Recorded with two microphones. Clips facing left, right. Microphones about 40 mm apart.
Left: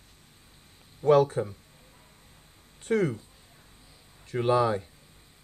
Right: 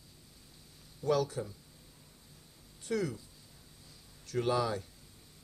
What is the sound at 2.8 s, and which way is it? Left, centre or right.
Speech, left.